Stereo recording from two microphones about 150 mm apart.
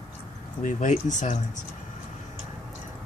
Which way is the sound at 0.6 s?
55° left (ahead or behind).